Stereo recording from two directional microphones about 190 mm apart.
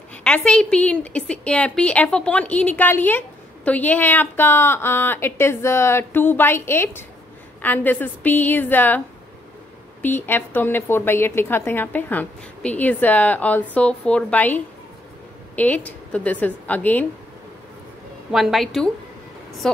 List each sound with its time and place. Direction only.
0.1 s a woman's voice: 5° left (ahead or behind)
10.0 s a woman's voice: 10° left (ahead or behind)
18.3 s a woman's voice: centre (ahead or behind)